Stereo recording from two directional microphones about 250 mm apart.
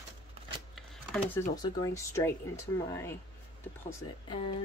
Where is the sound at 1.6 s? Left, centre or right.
Centre.